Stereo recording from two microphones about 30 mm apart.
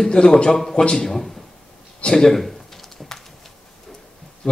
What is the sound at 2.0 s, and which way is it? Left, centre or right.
Computer keyboard, centre.